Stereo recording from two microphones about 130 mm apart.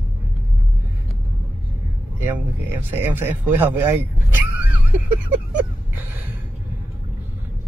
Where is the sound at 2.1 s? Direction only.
15° right (ahead or behind).